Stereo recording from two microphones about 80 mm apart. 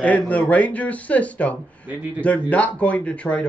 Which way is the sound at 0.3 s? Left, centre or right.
Centre.